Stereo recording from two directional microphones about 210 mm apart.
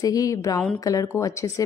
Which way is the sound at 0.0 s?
15° left (ahead or behind).